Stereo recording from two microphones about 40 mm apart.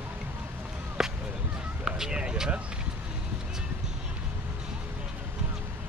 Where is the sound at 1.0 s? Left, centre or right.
Centre.